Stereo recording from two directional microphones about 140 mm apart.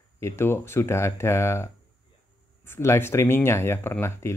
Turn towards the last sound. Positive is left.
turn(degrees=20)  # may be behind; listen again after turning